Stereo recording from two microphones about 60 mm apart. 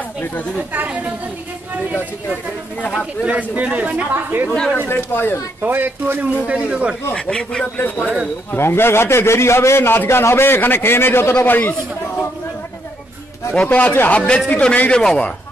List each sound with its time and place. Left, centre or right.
0.6 s speech: right
3.3 s speech: right
4.1 s speech: right
4.7 s a man's voice: left
5.6 s speech: right
6.4 s speech: centre
7.2 s speech: centre
7.7 s a man's voice: left
13.6 s speech: left